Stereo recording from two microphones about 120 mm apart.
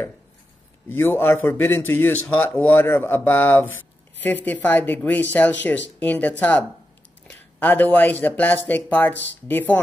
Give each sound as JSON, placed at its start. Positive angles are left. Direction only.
{"t": 0.8, "sound": "a man's voice", "side_deg": 20}